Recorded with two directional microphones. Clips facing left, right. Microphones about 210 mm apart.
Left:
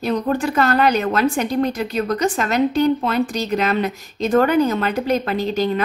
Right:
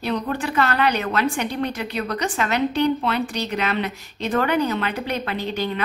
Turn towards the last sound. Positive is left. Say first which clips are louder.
# left 6 dB
turn(degrees=40)  # may be behind; listen again after turning